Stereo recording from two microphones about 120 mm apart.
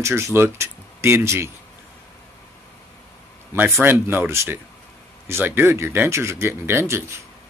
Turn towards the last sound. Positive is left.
turn(degrees=-20)  # may be behind; listen again after turning